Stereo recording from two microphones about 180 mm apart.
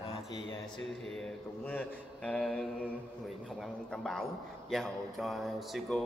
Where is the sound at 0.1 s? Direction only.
25° left (ahead or behind).